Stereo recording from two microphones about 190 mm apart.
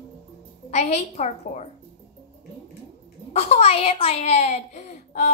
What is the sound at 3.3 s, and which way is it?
A child's voice, 35° left (ahead or behind).